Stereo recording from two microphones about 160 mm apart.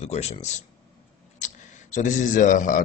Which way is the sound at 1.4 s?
50° left (ahead or behind).